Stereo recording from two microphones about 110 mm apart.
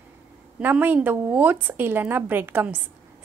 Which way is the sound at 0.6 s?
15° right (ahead or behind).